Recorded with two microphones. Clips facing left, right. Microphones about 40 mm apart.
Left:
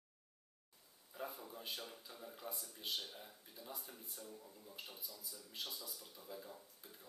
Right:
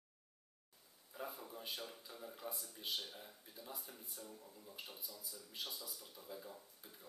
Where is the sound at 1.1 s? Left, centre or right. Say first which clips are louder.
Even; centre.